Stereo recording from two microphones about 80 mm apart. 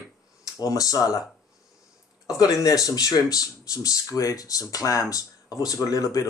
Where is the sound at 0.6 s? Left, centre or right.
Left.